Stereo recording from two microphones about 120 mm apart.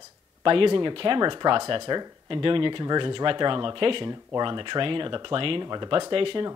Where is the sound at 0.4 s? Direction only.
45° right (ahead or behind).